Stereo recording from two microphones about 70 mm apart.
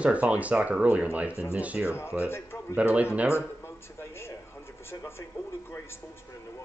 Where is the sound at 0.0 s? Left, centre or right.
Centre.